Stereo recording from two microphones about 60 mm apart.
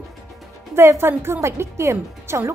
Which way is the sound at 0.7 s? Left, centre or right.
Right.